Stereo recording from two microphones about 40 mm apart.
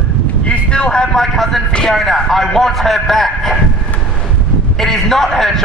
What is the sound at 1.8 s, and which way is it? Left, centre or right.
A man's voice, centre.